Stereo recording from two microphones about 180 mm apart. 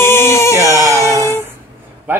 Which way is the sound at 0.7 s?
15° right (ahead or behind).